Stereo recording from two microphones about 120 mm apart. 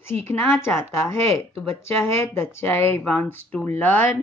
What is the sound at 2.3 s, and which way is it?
Speech, 20° left (ahead or behind).